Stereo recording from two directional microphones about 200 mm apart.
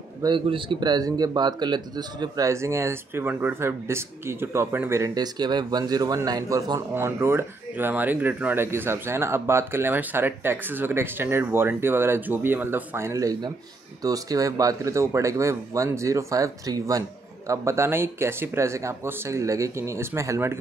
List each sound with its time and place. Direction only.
0.2 s a man's voice: 25° right (ahead or behind)